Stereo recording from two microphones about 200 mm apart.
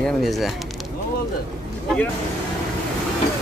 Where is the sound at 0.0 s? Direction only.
Centre (ahead or behind).